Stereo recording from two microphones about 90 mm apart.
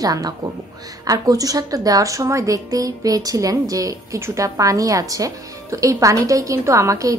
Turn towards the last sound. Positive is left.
turn(degrees=-35)  # may be behind; listen again after turning